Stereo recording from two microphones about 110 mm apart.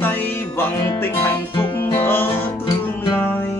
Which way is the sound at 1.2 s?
25° left (ahead or behind).